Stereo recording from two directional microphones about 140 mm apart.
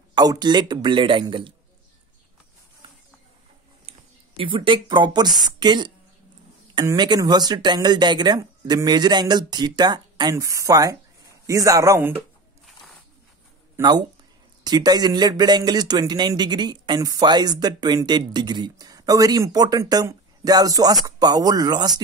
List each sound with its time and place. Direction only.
0.1 s speech: 30° right (ahead or behind)
4.4 s speech: 35° right (ahead or behind); by 12.3 s 15° right (ahead or behind)
13.7 s speech: 30° right (ahead or behind)